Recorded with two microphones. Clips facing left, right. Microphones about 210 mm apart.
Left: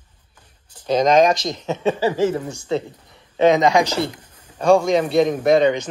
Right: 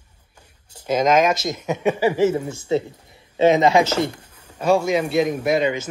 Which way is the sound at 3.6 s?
15° left (ahead or behind).